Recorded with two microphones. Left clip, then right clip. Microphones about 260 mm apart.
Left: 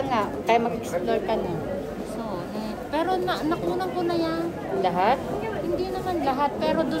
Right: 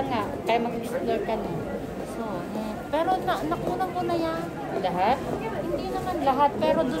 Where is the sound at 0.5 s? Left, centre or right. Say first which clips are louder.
Left 3 dB; left.